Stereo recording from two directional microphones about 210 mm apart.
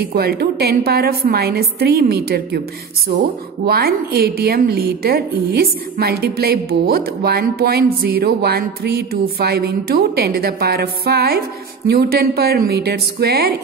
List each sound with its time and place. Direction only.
0.0 s a woman's voice: 45° right (ahead or behind)